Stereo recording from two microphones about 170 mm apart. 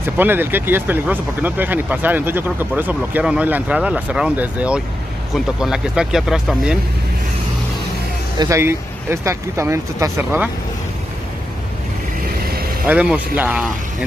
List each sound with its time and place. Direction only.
0.2 s speech: 10° right (ahead or behind)
8.4 s speech: 15° right (ahead or behind)
12.8 s speech: 5° right (ahead or behind)